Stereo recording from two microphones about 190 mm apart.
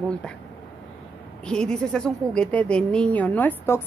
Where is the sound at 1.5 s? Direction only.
5° left (ahead or behind).